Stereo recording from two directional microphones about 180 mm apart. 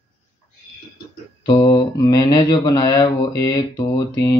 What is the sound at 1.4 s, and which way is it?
Speech, 25° left (ahead or behind).